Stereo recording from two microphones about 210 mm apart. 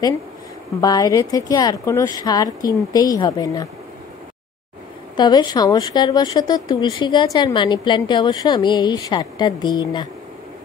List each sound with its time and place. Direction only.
0.7 s speech: 15° left (ahead or behind)
5.1 s a woman's voice: 20° left (ahead or behind)